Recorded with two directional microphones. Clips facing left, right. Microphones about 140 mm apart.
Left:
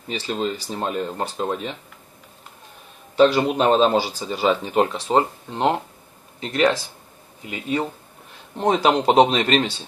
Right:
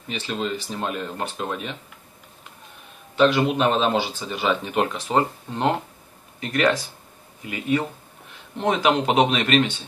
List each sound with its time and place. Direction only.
0.1 s speech: 35° left (ahead or behind)
3.2 s speech: 35° left (ahead or behind)